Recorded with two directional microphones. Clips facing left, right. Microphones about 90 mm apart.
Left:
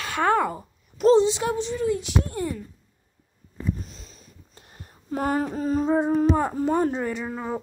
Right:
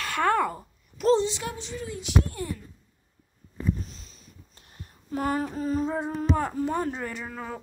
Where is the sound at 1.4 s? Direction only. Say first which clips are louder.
Left 10 dB; 30° left (ahead or behind).